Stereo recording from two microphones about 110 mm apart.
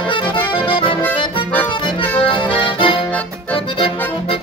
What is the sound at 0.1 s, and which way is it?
Accordion, 50° left (ahead or behind).